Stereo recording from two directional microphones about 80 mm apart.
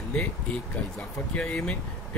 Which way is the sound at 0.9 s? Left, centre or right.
Centre.